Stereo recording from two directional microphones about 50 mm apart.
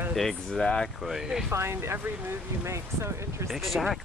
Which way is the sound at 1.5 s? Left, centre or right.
Right.